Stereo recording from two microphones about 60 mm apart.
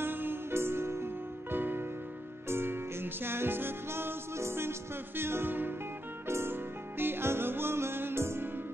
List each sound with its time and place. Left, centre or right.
0.0 s music: right